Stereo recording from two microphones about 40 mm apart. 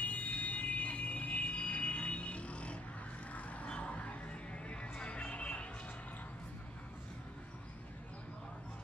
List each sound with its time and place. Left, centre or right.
0.0 s vehicle: left
3.6 s a sound: left
3.9 s music: left